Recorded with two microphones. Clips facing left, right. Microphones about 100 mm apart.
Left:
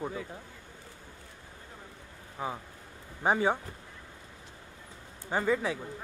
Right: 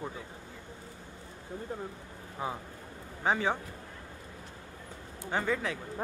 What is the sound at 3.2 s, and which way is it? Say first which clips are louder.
Speech: left 2 dB; 10° left (ahead or behind).